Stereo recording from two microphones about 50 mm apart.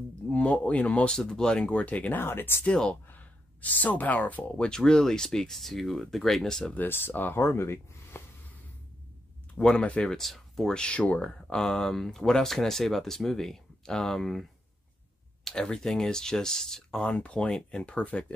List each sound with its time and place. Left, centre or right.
0.3 s speech: left
1.3 s speech: centre; by 2.1 s left
2.1 s speech: left
2.7 s speech: centre
3.1 s speech: left
4.6 s speech: centre
6.9 s speech: left
7.4 s speech: left
9.6 s speech: centre
10.7 s speech: left
11.5 s speech: centre
15.4 s speech: centre
17.1 s speech: left